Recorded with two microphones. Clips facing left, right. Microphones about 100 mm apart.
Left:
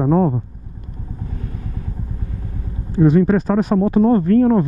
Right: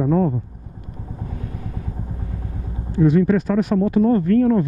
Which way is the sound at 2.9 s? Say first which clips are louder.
Left 2 dB; 35° left (ahead or behind).